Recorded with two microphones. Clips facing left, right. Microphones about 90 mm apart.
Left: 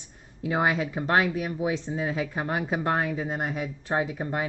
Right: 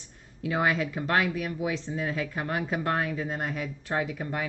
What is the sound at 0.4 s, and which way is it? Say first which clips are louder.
Speech: left 1 dB; 25° left (ahead or behind).